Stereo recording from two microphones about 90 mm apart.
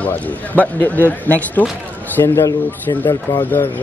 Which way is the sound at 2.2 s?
40° left (ahead or behind).